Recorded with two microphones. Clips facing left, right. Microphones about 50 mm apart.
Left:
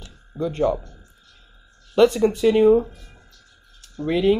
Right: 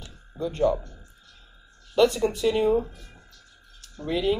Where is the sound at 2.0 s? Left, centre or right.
Left.